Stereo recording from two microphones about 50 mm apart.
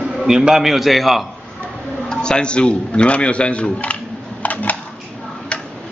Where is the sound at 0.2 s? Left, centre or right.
Centre.